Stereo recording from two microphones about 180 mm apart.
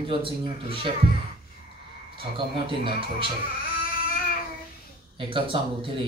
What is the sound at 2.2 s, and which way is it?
Speech, 30° right (ahead or behind).